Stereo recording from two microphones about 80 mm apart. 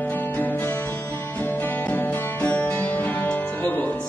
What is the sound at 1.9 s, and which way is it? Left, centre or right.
Music, left.